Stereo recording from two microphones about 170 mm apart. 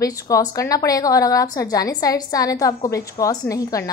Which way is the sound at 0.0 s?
20° left (ahead or behind).